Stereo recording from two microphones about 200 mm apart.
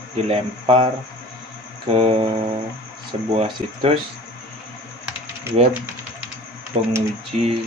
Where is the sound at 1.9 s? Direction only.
30° right (ahead or behind).